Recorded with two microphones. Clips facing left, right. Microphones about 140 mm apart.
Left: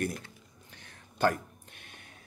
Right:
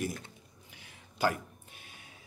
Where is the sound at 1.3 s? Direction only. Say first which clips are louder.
Left 2 dB; 55° left (ahead or behind).